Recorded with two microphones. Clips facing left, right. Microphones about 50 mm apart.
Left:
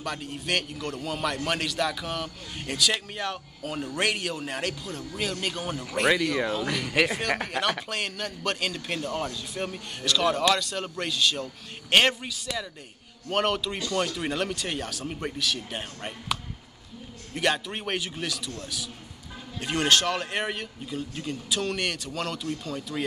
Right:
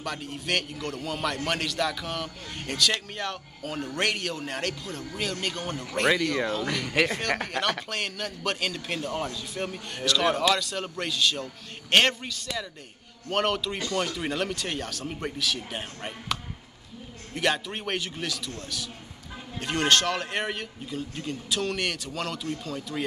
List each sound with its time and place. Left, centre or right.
0.0 s a man's voice: centre